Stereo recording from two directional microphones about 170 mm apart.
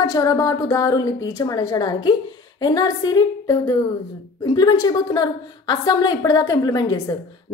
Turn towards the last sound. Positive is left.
turn(degrees=25)  # may be behind; listen again after turning